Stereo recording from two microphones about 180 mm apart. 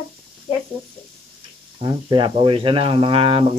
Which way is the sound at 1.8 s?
25° right (ahead or behind).